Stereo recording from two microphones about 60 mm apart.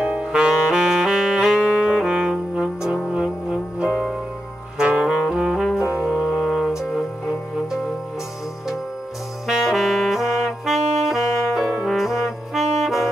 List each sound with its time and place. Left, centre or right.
0.0 s saxophone: centre
3.1 s music: centre
4.7 s brass instrument: centre
9.5 s saxophone: centre